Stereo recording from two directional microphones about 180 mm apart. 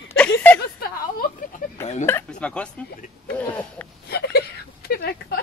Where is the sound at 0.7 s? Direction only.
55° left (ahead or behind).